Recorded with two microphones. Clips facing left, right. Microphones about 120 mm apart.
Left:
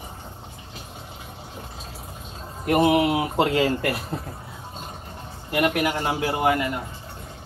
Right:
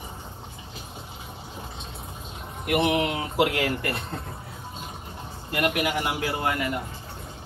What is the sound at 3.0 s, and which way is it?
Speech, 10° left (ahead or behind).